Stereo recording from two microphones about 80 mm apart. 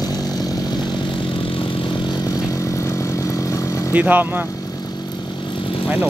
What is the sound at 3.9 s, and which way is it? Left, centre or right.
Speech, right.